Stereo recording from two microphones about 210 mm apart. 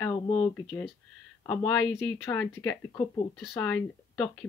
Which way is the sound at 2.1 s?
10° left (ahead or behind).